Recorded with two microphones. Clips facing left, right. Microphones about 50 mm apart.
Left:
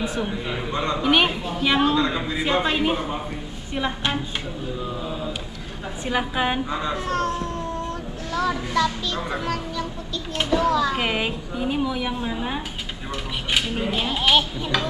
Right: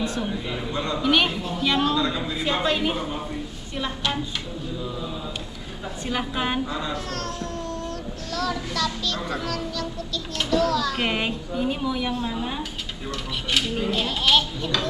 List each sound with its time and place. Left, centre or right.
0.0 s a woman's voice: centre
0.7 s a man's voice: left
6.0 s a man's voice: centre
11.0 s a woman's voice: centre